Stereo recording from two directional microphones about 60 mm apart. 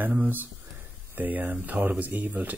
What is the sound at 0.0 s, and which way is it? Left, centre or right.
Speech, right.